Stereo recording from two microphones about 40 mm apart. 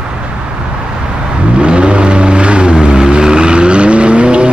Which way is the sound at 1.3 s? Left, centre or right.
Right.